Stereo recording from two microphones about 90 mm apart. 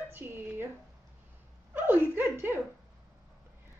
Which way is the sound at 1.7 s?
20° right (ahead or behind).